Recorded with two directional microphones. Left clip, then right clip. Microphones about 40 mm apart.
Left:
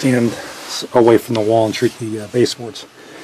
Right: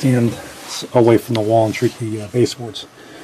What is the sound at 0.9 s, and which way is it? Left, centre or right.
Speech, centre.